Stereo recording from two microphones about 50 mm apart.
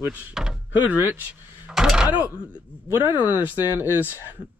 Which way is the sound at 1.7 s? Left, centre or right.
Centre.